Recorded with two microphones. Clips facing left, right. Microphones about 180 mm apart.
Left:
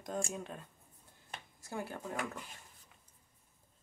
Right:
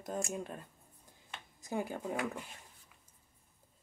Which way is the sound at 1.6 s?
15° right (ahead or behind).